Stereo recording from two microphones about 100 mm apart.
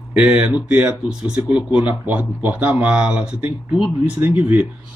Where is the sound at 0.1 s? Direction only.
10° right (ahead or behind).